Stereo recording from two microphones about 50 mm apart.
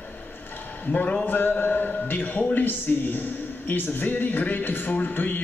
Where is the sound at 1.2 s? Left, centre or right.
Left.